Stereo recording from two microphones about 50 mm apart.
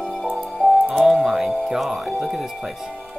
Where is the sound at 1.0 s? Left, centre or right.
Centre.